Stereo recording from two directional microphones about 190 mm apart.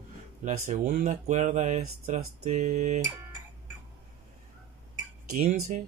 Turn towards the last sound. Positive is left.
turn(degrees=-45)  # may be behind; listen again after turning